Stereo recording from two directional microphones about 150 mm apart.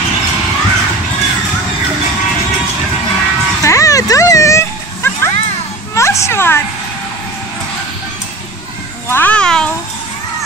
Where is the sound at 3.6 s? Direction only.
20° left (ahead or behind).